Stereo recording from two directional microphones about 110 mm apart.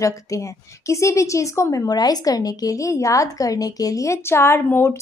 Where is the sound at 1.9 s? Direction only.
35° left (ahead or behind); by 4.9 s 20° left (ahead or behind).